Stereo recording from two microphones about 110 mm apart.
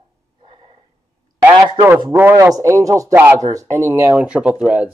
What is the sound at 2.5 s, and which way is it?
Speech, 30° right (ahead or behind).